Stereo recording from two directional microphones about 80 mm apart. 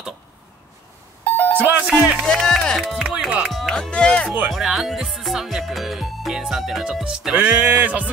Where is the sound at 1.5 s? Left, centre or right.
Right.